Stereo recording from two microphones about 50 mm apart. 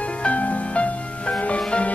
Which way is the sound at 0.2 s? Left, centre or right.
Left.